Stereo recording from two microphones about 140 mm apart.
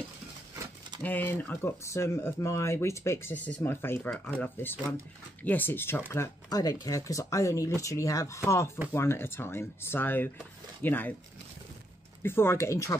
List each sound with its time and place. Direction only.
1.0 s speech: 10° left (ahead or behind)
12.2 s speech: 15° left (ahead or behind)